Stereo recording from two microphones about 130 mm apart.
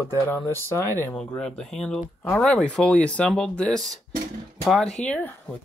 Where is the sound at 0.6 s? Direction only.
20° left (ahead or behind).